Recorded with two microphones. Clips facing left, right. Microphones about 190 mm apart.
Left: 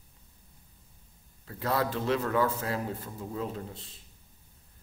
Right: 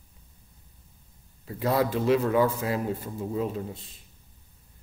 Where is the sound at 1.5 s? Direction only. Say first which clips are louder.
Right 5 dB; 15° right (ahead or behind).